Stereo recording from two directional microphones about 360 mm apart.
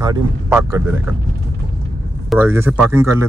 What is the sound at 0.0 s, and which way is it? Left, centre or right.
Speech, centre.